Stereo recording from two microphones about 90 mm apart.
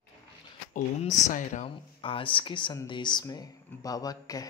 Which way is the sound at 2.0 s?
75° left (ahead or behind).